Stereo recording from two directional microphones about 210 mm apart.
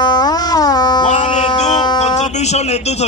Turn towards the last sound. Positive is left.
turn(degrees=30)  # may be behind; listen again after turning